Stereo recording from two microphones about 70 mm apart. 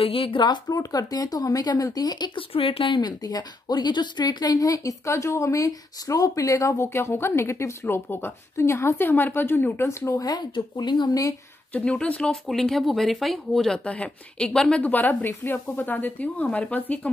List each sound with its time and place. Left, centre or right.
0.4 s a woman's voice: left
9.8 s a woman's voice: left
10.2 s speech: left
11.9 s speech: centre
13.8 s a woman's voice: centre